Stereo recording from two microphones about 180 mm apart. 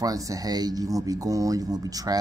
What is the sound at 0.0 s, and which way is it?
Speech, 20° right (ahead or behind).